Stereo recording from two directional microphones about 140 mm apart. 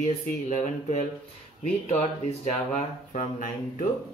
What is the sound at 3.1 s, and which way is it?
Speech, 65° left (ahead or behind).